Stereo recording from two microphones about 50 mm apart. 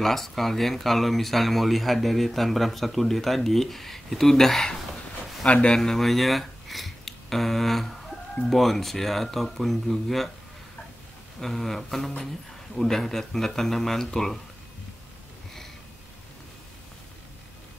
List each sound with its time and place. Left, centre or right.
0.0 s speech: centre
5.4 s speech: left
5.7 s speech: centre
11.4 s a sound: centre
12.7 s speech: centre